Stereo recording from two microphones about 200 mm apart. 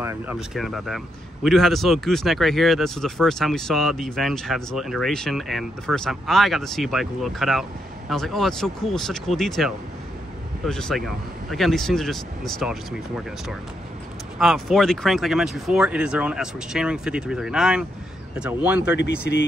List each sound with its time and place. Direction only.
0.0 s speech: 10° right (ahead or behind)
0.6 s speech: centre (ahead or behind)
14.4 s speech: centre (ahead or behind)
19.3 s speech: 60° left (ahead or behind)